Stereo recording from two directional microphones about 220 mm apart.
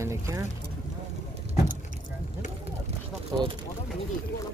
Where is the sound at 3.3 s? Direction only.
20° right (ahead or behind).